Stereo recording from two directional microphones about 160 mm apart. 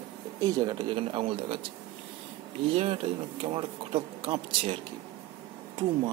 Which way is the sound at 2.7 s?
35° right (ahead or behind).